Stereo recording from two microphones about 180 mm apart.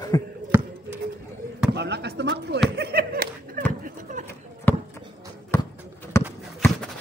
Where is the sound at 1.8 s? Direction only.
70° right (ahead or behind).